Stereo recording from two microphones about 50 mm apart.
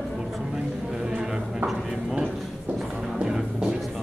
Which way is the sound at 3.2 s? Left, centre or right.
Centre.